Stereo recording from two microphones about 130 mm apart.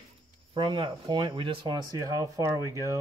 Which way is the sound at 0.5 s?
40° right (ahead or behind).